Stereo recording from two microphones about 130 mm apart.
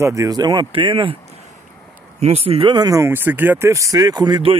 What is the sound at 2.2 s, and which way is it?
Speech, 50° right (ahead or behind).